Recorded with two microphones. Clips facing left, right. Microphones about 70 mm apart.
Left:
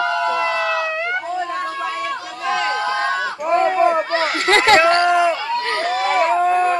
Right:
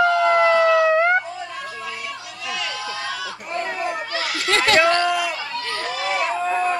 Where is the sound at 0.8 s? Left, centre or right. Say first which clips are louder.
Right 6 dB; right.